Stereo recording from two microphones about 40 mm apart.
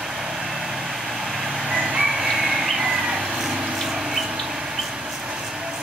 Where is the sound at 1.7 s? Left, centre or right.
Centre.